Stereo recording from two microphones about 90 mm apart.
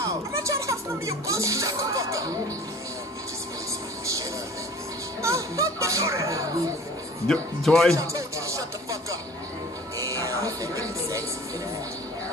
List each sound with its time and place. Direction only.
0.0 s music: 35° right (ahead or behind)
5.2 s a child's voice: 35° right (ahead or behind)
7.2 s a man's voice: 5° left (ahead or behind)
7.9 s music: 35° right (ahead or behind)
9.9 s music: 35° right (ahead or behind)